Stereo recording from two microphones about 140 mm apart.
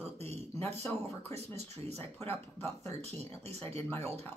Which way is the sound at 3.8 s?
15° left (ahead or behind).